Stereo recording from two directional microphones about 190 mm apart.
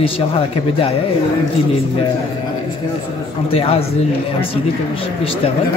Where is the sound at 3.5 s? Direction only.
30° left (ahead or behind).